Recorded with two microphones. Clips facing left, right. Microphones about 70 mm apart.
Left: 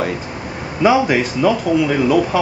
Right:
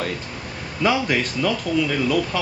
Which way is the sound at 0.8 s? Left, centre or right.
Centre.